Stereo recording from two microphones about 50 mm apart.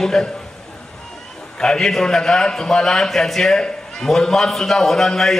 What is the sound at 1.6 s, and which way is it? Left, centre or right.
A man's voice, centre.